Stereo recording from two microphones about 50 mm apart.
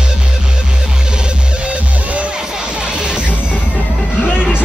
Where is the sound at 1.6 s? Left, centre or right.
Right.